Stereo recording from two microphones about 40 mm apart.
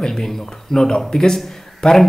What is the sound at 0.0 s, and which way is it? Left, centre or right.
A man's voice, centre.